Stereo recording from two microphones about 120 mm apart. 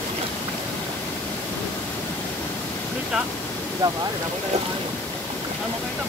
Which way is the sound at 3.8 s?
35° right (ahead or behind).